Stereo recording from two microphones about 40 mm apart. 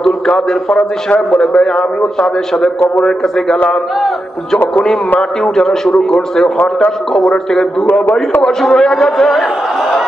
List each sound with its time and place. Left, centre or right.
0.3 s a man's voice: left
1.4 s a man's voice: centre
5.4 s a man's voice: centre